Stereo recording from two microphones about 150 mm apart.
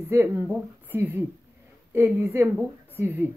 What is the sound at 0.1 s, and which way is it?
Speech, 15° right (ahead or behind).